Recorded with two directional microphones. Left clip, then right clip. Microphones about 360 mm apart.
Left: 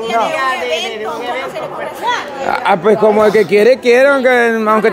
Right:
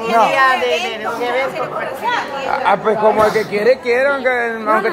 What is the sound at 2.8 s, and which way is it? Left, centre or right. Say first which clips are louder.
A man's voice: left 6 dB; left.